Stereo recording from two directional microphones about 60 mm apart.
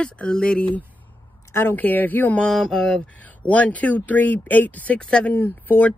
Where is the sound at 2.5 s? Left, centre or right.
Centre.